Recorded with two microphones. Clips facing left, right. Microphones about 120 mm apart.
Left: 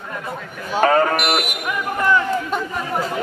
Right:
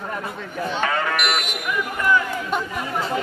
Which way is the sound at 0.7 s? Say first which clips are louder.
Left 9 dB; 40° left (ahead or behind).